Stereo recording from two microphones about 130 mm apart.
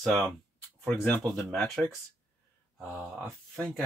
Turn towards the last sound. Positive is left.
turn(degrees=5)  # may be behind; listen again after turning